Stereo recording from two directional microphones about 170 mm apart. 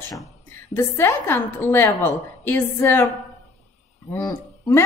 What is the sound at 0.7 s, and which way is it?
A woman's voice, 15° left (ahead or behind).